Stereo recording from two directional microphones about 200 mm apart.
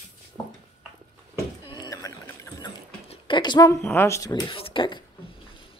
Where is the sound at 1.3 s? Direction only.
20° left (ahead or behind).